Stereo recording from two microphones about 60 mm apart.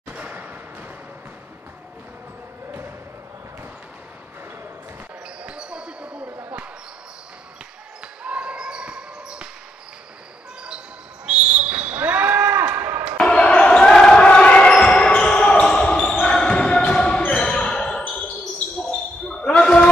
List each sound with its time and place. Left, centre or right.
0.1 s a sound: right
5.4 s basketball bounce: centre
8.2 s basketball bounce: centre
11.2 s basketball bounce: centre; by 12.6 s right
13.2 s basketball bounce: centre
19.2 s basketball bounce: centre